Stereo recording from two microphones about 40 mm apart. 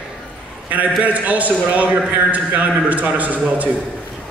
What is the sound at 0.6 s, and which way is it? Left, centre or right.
A man's voice, right.